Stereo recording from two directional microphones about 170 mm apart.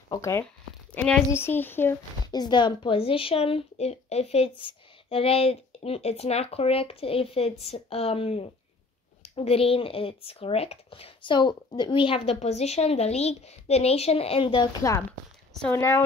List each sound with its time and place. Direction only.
0.1 s speech: 15° left (ahead or behind)
2.3 s a woman's voice: 25° left (ahead or behind)
14.8 s speech: 15° left (ahead or behind)